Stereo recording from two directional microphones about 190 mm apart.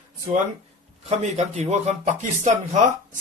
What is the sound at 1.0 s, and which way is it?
Speech, 35° right (ahead or behind).